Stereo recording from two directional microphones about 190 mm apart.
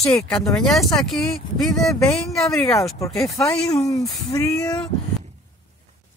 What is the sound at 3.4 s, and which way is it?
Speech, 15° left (ahead or behind).